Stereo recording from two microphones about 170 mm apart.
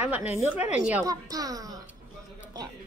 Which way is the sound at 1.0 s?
20° right (ahead or behind).